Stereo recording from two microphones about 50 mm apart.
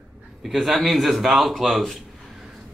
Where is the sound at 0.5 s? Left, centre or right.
Centre.